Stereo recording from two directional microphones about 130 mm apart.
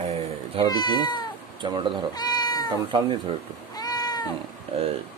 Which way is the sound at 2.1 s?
30° left (ahead or behind).